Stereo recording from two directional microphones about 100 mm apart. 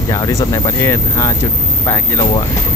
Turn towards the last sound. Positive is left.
turn(degrees=30)  # may be behind; listen again after turning